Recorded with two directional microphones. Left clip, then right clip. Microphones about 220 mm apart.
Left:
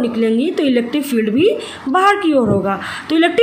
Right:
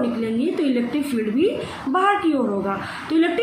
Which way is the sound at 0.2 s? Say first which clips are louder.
Left 7 dB; 45° left (ahead or behind).